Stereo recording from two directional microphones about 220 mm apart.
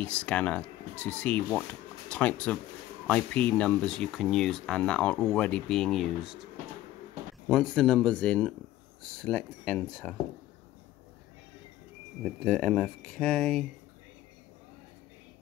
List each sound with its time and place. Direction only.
0.0 s speech: 5° left (ahead or behind)
7.4 s speech: 5° left (ahead or behind)
12.4 s speech: 5° left (ahead or behind)